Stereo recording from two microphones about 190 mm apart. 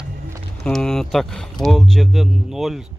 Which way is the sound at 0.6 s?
5° left (ahead or behind).